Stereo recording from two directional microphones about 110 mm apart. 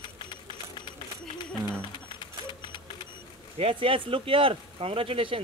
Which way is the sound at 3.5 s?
55° right (ahead or behind).